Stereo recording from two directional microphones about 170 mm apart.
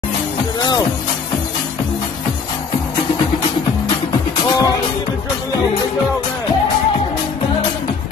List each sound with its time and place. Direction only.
4.5 s music: 25° left (ahead or behind)